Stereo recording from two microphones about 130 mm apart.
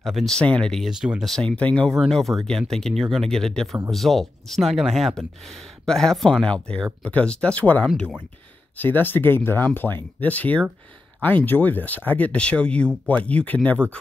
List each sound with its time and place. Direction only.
0.0 s speech: centre (ahead or behind)
1.3 s speech: 5° left (ahead or behind)